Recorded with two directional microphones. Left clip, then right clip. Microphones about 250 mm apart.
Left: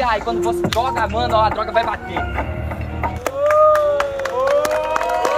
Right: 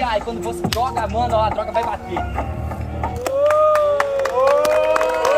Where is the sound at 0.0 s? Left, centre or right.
Centre.